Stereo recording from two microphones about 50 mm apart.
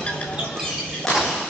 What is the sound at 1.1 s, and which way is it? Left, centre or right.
Thump, centre.